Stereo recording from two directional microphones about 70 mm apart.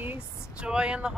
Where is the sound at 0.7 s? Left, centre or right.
Centre.